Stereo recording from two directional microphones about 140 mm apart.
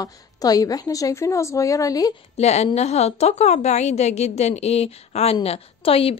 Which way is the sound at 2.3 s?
50° left (ahead or behind).